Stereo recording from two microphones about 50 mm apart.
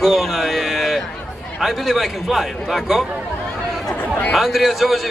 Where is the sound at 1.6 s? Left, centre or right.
Centre.